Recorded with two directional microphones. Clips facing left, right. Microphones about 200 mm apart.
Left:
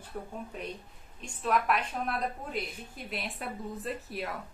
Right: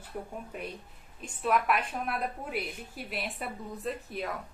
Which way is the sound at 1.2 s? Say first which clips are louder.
Right 1 dB; 5° right (ahead or behind).